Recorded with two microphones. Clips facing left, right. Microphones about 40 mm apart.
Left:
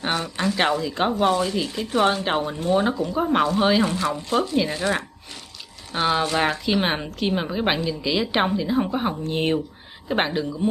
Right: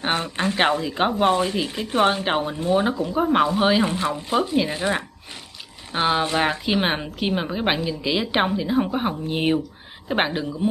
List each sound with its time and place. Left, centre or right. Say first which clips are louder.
0.0 s a woman's voice: right 1 dB; right
0.8 s a woman's voice: right 1 dB; centre
1.1 s a woman's voice: right 1 dB; right; by 10.7 s centre